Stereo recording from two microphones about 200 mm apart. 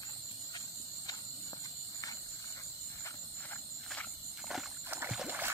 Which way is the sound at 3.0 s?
10° left (ahead or behind).